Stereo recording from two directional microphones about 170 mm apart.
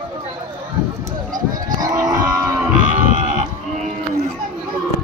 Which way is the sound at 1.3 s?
20° right (ahead or behind).